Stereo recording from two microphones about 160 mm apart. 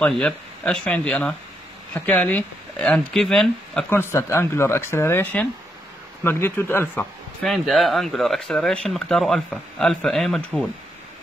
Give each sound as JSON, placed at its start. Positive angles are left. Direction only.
{"t": 0.0, "sound": "speech", "side_deg": 5}
{"t": 3.9, "sound": "speech", "side_deg": 15}
{"t": 7.4, "sound": "speech", "side_deg": 0}